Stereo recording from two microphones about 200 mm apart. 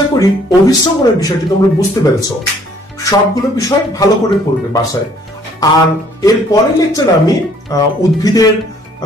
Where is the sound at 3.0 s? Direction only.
15° left (ahead or behind).